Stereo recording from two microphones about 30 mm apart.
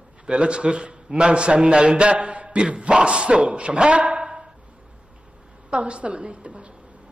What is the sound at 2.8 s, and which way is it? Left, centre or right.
A man's voice, right.